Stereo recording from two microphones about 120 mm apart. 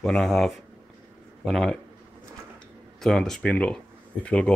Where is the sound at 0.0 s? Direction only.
5° left (ahead or behind).